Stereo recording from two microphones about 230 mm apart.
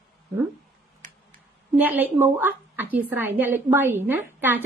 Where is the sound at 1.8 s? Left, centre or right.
Centre.